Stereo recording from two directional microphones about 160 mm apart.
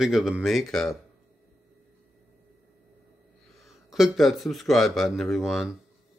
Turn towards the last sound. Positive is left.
turn(degrees=0)  # may be behind; listen again after turning